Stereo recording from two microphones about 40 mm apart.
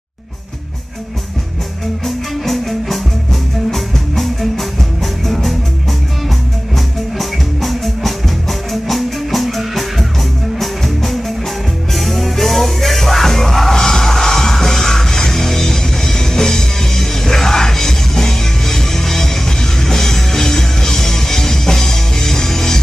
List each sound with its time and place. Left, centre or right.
2.0 s music: centre
7.2 s music: centre